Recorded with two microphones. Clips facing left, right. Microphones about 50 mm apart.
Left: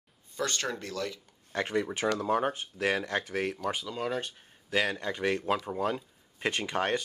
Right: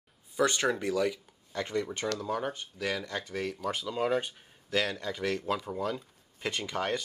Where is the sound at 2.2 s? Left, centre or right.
Left.